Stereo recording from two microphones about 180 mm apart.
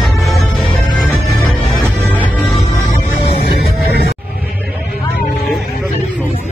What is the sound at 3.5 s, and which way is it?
Music, 60° left (ahead or behind).